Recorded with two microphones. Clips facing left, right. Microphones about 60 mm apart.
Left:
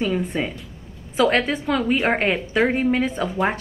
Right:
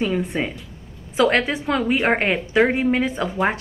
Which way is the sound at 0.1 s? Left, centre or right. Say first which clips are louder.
Right 1 dB; centre.